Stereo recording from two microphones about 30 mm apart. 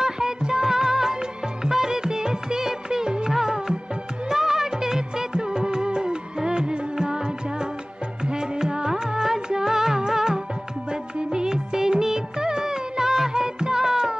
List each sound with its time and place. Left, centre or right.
0.0 s music: right
4.3 s music of bollywood: centre
8.2 s music: right
11.2 s music of bollywood: right
13.3 s music: right